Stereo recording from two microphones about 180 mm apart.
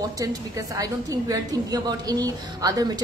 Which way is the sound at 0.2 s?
20° right (ahead or behind).